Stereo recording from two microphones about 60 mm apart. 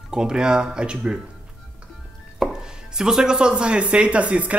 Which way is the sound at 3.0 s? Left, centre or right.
Centre.